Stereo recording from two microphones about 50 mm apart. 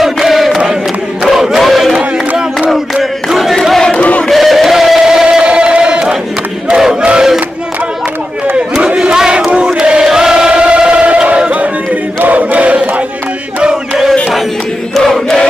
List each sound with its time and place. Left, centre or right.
0.0 s chant: centre
1.2 s crowd: centre
2.7 s battle cry: centre
3.9 s a sound: left
4.3 s chant: centre
6.7 s crowd: centre
8.8 s battle cry: centre
9.7 s choir: centre
15.0 s choir: centre